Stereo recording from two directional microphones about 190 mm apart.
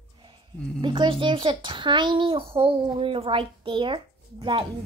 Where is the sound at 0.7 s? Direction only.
25° right (ahead or behind).